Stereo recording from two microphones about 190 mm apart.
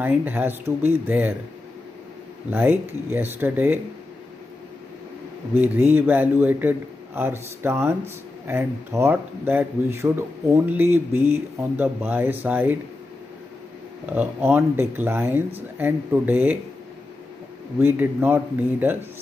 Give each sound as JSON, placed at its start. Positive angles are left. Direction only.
{"t": 0.0, "sound": "speech", "side_deg": -10}
{"t": 2.5, "sound": "speech", "side_deg": -10}
{"t": 5.5, "sound": "speech", "side_deg": -10}
{"t": 14.1, "sound": "speech", "side_deg": -10}
{"t": 17.7, "sound": "speech", "side_deg": -10}